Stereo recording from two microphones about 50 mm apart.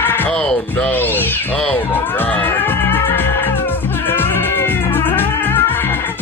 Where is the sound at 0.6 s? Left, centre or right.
Left.